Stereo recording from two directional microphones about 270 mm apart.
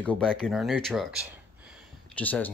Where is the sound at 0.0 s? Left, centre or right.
Centre.